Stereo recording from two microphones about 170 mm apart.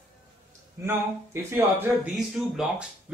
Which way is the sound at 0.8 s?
15° right (ahead or behind).